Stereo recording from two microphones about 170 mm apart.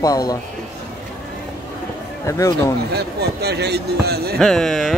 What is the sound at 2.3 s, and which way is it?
Speech, 20° left (ahead or behind).